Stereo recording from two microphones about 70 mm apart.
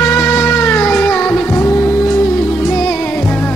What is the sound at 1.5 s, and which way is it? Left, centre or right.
Music, left.